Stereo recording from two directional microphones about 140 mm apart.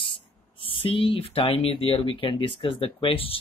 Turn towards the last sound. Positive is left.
turn(degrees=40)  # may be behind; listen again after turning